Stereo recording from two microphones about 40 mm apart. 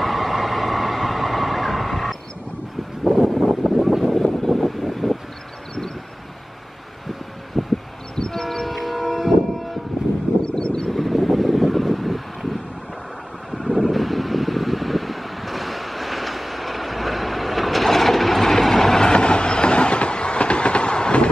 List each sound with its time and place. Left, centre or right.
0.0 s vehicle: centre
7.5 s a sound: centre
8.2 s train: centre
10.4 s vehicle: centre
10.9 s vehicle: centre
13.5 s mechanical fan: centre; by 21.3 s left